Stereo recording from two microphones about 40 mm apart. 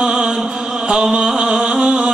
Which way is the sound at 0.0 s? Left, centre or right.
Centre.